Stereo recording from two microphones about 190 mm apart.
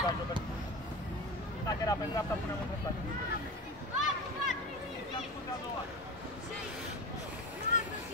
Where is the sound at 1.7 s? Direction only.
20° left (ahead or behind).